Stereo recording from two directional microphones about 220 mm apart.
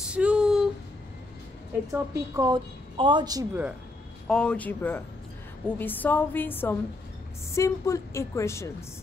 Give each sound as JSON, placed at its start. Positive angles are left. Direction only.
{"t": 0.0, "sound": "a sound", "side_deg": -5}
{"t": 1.9, "sound": "a woman's voice", "side_deg": -15}
{"t": 4.3, "sound": "a woman's voice", "side_deg": 5}